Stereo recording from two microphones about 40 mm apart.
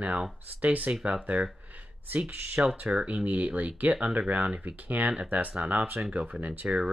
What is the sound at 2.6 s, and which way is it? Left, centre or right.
Speech, right.